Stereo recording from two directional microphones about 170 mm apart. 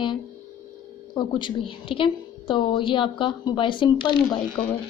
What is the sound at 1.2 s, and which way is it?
A woman's voice, 30° left (ahead or behind).